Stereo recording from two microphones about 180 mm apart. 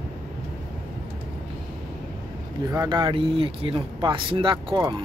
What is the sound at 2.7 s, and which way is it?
Speech, 20° right (ahead or behind).